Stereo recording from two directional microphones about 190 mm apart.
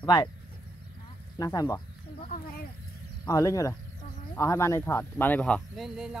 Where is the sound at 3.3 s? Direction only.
15° left (ahead or behind).